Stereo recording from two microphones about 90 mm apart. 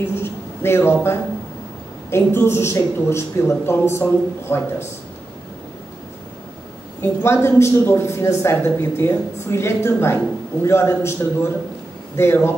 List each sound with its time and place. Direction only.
0.1 s a sound: 25° left (ahead or behind)
2.0 s a man's voice: 30° left (ahead or behind)
7.0 s a man's voice: 30° left (ahead or behind)